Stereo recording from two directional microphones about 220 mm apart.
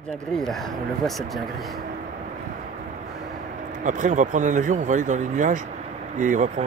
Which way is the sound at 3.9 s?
35° right (ahead or behind).